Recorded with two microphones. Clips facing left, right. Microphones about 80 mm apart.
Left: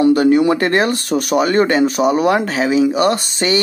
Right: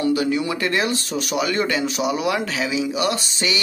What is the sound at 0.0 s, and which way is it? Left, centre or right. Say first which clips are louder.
Speech: left 9 dB; left.